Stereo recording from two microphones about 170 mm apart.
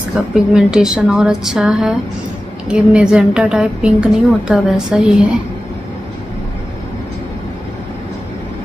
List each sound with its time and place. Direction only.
0.3 s a woman's voice: 5° right (ahead or behind)